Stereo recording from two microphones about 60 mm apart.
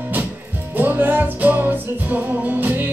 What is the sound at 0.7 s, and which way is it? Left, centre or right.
Music, right.